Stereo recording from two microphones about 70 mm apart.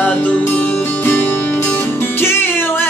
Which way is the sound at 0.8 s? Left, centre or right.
Left.